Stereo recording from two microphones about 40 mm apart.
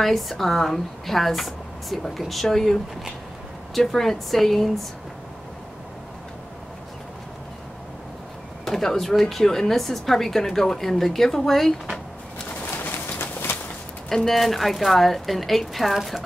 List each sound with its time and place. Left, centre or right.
0.0 s a woman's voice: centre
3.9 s a woman's voice: centre
8.6 s a woman's voice: centre
12.7 s bird: left
14.0 s a woman's voice: centre